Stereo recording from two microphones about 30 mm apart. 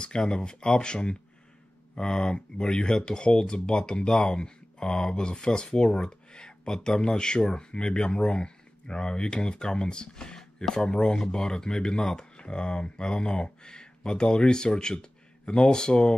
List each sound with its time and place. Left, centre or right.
0.3 s speech: left